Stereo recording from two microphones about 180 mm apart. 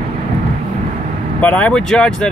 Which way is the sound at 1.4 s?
10° left (ahead or behind).